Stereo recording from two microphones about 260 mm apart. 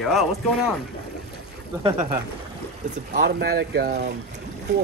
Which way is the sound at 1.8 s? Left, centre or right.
Centre.